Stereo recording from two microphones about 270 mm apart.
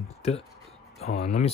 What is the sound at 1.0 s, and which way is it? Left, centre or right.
Speech, left.